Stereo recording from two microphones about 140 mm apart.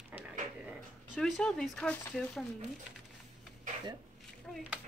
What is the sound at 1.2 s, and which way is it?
A woman's voice, 5° left (ahead or behind).